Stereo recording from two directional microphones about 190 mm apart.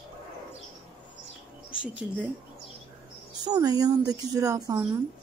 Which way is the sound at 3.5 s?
20° right (ahead or behind).